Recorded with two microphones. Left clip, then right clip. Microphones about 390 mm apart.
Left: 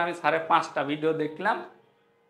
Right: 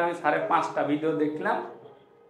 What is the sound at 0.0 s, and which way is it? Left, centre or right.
Speech, left.